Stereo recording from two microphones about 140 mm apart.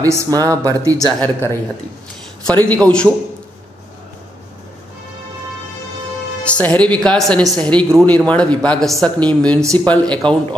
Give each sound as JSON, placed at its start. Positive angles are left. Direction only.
{"t": 0.0, "sound": "speech", "side_deg": -25}
{"t": 1.2, "sound": "a woman's voice", "side_deg": 15}
{"t": 6.4, "sound": "a woman's voice", "side_deg": 10}